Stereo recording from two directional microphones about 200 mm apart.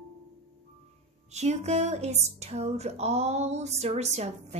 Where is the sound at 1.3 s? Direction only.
35° right (ahead or behind).